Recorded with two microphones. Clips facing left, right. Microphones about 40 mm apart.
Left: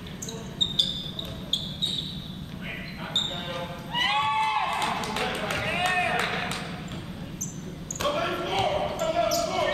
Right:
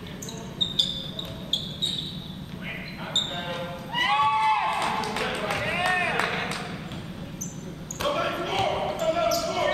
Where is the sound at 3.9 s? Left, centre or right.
Left.